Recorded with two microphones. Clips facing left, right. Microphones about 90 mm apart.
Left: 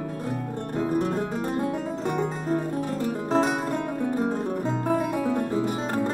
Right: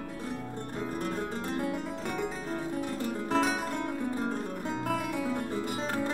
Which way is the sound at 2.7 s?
55° left (ahead or behind).